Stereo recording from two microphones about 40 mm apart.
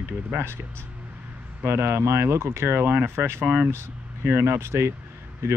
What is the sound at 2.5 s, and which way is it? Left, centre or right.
Speech, right.